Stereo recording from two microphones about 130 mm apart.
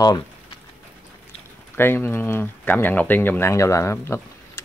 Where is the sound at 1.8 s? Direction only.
20° left (ahead or behind).